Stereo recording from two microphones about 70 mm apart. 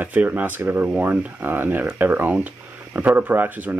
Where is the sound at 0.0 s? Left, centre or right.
Right.